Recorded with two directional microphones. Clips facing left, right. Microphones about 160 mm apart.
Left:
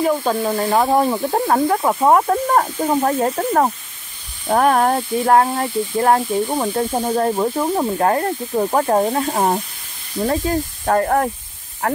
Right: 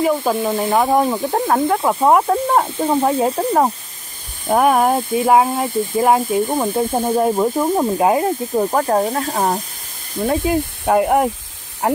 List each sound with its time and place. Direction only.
0.0 s speech: 5° right (ahead or behind)
8.6 s speech: 5° left (ahead or behind)
10.2 s speech: 10° right (ahead or behind)